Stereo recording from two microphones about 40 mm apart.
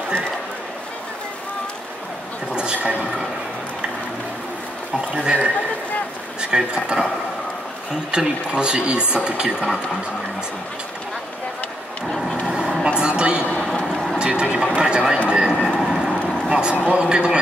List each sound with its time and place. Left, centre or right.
2.5 s a sound: right
5.1 s speech: right
8.1 s speech: right
12.8 s a woman's voice: right
15.8 s vehicle: centre
16.4 s speech: right